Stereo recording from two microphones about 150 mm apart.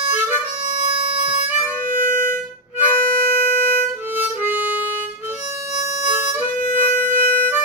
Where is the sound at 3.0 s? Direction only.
75° right (ahead or behind).